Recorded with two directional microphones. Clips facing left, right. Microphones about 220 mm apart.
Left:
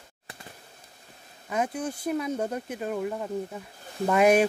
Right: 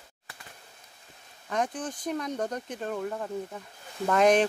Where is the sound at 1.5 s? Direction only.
5° left (ahead or behind).